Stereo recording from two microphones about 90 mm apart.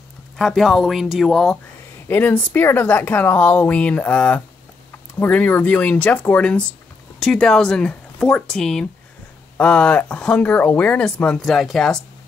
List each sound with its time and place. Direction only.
0.4 s speech: 5° left (ahead or behind)
2.0 s speech: 20° left (ahead or behind)
11.3 s speech: centre (ahead or behind)